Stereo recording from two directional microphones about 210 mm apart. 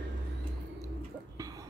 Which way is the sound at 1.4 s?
15° right (ahead or behind).